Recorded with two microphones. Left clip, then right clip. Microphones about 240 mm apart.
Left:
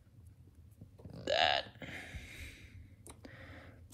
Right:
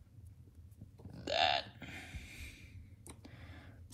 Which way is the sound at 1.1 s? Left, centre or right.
Centre.